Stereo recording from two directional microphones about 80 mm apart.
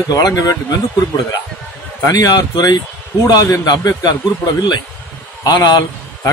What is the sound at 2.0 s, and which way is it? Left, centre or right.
Speech, left.